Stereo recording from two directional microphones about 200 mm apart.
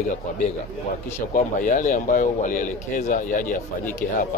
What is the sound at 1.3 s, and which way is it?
A man's voice, 40° left (ahead or behind).